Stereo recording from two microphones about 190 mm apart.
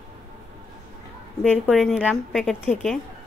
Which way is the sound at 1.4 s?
5° left (ahead or behind).